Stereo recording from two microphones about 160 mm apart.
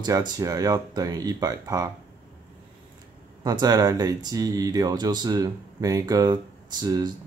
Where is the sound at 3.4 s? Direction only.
25° right (ahead or behind).